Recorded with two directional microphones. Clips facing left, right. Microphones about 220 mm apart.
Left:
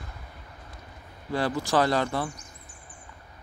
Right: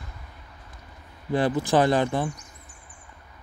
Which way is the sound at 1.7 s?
20° right (ahead or behind).